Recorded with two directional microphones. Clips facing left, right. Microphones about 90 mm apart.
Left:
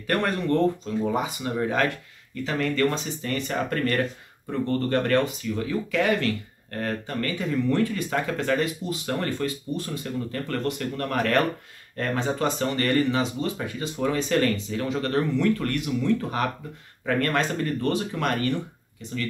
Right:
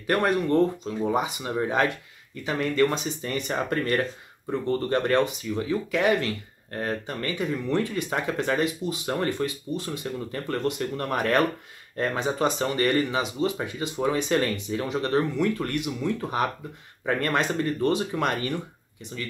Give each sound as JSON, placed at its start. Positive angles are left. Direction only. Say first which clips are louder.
{"t": 0.0, "sound": "speech", "louder": "right 2 dB", "side_deg": -15}